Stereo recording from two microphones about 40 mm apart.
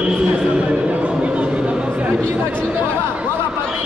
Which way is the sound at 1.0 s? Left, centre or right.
Right.